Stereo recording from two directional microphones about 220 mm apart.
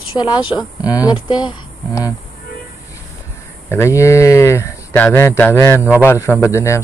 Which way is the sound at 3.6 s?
10° left (ahead or behind).